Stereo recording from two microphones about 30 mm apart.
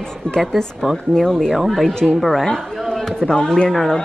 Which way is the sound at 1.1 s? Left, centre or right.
Centre.